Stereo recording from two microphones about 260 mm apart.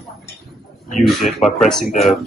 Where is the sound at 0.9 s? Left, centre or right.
Centre.